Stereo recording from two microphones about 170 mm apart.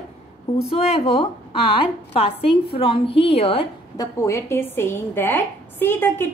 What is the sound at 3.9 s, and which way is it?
A woman's voice, 15° left (ahead or behind).